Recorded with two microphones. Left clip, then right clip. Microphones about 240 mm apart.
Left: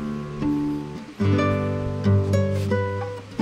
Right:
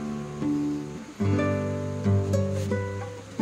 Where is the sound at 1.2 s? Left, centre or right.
Left.